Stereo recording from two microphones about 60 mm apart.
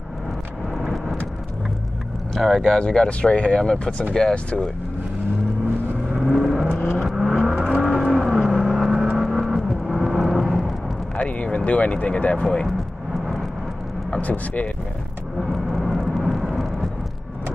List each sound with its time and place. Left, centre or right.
2.3 s speech: centre
2.8 s speech: centre
6.1 s vehicle: centre
11.1 s speech: left
14.1 s speech: left
15.4 s vehicle: centre